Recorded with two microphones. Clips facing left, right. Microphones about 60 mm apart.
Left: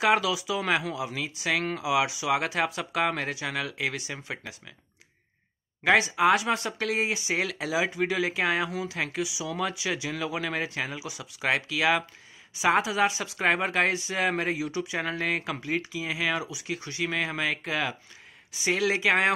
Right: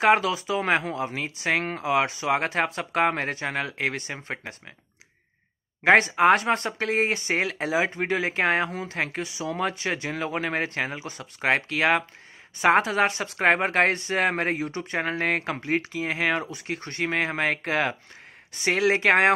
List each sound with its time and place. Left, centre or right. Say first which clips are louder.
0.0 s speech: right 3 dB; right
5.9 s a woman's voice: right 4 dB; right
7.5 s a woman's voice: right 3 dB; right